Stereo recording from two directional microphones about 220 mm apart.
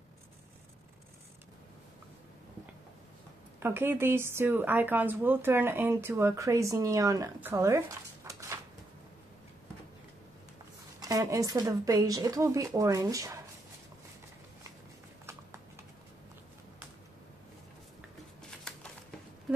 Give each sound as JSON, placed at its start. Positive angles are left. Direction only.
{"t": 3.5, "sound": "speech", "side_deg": -10}
{"t": 11.0, "sound": "speech", "side_deg": -15}
{"t": 18.4, "sound": "a sound", "side_deg": 5}